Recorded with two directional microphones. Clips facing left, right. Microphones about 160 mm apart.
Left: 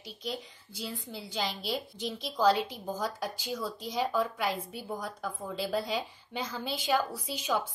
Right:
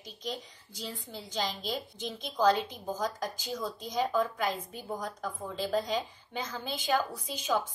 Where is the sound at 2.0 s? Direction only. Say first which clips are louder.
Even; centre (ahead or behind).